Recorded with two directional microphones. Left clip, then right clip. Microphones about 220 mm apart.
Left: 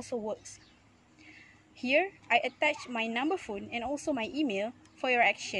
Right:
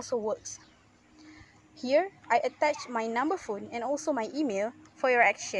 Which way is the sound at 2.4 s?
Centre (ahead or behind).